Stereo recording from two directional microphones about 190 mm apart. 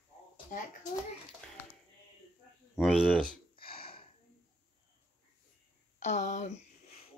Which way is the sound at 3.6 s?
30° left (ahead or behind).